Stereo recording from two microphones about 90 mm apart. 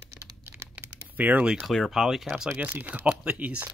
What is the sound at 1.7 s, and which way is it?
Speech, centre (ahead or behind).